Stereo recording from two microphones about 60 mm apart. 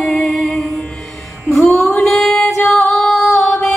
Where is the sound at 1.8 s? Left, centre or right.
Centre.